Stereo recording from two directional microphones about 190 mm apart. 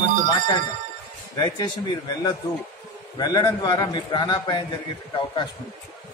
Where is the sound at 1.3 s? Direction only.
20° left (ahead or behind).